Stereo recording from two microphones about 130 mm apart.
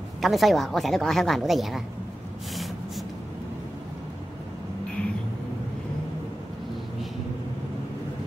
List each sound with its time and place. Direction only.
0.2 s a woman's voice: centre (ahead or behind)